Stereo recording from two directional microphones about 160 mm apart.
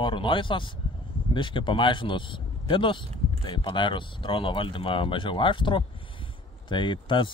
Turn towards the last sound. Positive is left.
turn(degrees=30)  # may be behind; listen again after turning